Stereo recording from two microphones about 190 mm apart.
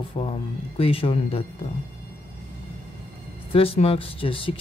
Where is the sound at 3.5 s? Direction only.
30° left (ahead or behind).